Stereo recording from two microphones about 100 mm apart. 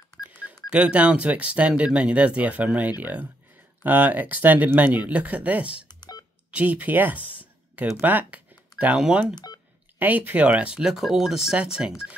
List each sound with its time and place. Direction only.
0.3 s music: 15° right (ahead or behind)
0.7 s speech: 10° right (ahead or behind)
5.9 s telephone dialing: 45° left (ahead or behind)
6.5 s speech: 15° right (ahead or behind)